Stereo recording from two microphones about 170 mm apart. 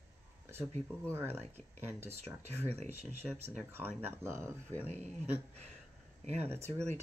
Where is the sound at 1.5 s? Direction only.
15° right (ahead or behind).